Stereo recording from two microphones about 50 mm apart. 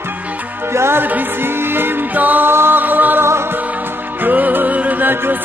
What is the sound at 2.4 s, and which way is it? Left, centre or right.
Music, right.